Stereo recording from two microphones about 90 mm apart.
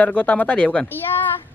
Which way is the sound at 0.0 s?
15° left (ahead or behind).